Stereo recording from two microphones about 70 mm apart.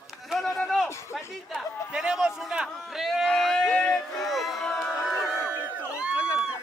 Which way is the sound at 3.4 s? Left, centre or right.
Centre.